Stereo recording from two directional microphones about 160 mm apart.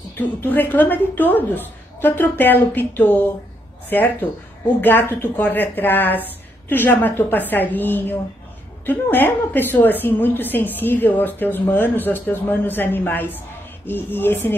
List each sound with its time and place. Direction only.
0.4 s a woman's voice: 10° left (ahead or behind)